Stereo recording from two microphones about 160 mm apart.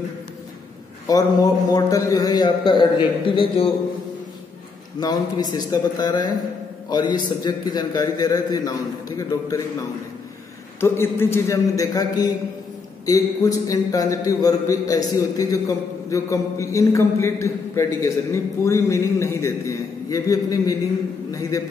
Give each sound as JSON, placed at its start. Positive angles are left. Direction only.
{"t": 1.0, "sound": "a man's voice", "side_deg": 25}
{"t": 5.0, "sound": "a man's voice", "side_deg": 25}
{"t": 10.8, "sound": "a man's voice", "side_deg": 15}